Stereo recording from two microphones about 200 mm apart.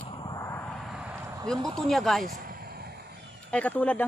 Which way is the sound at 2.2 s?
45° right (ahead or behind).